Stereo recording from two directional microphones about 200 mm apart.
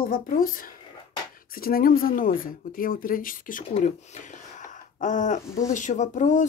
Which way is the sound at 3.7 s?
30° left (ahead or behind).